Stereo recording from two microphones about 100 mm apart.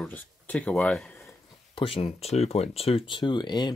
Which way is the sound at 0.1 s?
15° left (ahead or behind).